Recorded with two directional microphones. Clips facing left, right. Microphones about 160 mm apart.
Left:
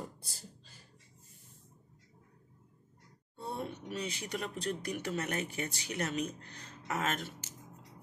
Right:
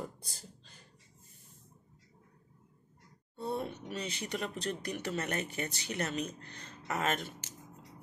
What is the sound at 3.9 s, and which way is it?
Speech, 10° left (ahead or behind).